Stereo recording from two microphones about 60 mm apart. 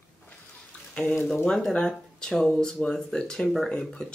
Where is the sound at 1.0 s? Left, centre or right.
Centre.